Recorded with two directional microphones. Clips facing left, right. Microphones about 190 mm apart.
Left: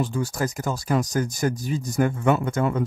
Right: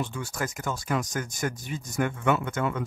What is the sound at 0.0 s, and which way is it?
Speech, 35° left (ahead or behind).